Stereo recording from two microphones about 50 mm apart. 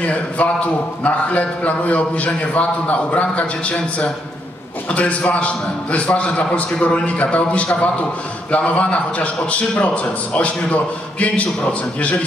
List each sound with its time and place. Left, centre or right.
0.0 s a man's voice: left